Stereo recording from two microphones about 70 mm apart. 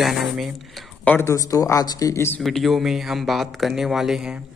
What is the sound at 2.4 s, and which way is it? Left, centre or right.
Speech, centre.